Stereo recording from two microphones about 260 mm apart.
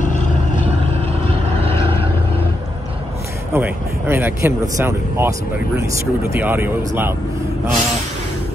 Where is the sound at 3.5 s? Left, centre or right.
Centre.